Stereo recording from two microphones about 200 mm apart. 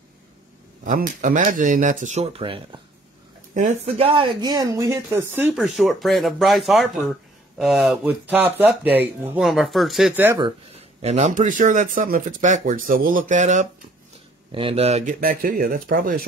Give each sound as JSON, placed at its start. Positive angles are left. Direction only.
{"t": 0.8, "sound": "speech", "side_deg": -40}
{"t": 10.4, "sound": "speech", "side_deg": -30}
{"t": 15.1, "sound": "speech", "side_deg": -45}